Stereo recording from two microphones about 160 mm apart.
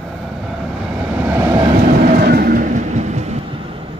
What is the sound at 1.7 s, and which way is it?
Train, 55° right (ahead or behind).